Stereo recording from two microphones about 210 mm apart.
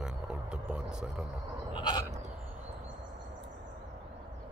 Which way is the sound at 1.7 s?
20° left (ahead or behind).